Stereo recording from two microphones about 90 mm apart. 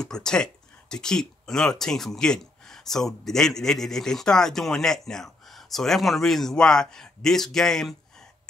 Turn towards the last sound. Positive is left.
turn(degrees=5)  # may be behind; listen again after turning